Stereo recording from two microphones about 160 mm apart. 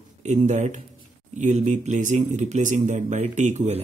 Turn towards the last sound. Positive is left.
turn(degrees=-45)  # may be behind; listen again after turning